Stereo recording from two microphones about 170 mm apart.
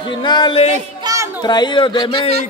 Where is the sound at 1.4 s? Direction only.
25° left (ahead or behind).